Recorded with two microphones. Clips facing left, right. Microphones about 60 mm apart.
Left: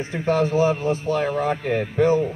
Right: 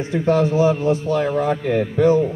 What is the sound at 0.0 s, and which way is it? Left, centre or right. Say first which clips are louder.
A man's voice: right 4 dB; left.